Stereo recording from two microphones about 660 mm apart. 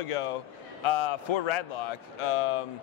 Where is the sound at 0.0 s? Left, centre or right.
Left.